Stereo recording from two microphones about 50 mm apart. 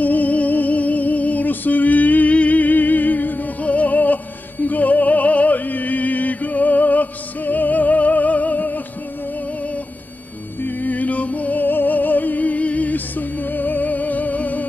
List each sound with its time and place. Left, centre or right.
0.0 s music: left
10.6 s music: left